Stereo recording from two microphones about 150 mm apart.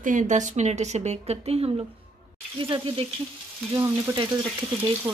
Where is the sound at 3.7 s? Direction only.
20° right (ahead or behind).